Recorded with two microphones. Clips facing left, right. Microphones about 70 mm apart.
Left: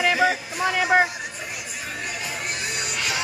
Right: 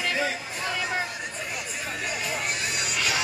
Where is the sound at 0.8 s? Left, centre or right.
Left.